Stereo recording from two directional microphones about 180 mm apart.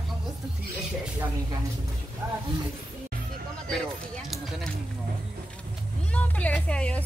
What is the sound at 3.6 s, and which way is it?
Speech, centre (ahead or behind).